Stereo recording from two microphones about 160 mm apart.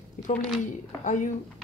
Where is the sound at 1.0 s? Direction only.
50° left (ahead or behind).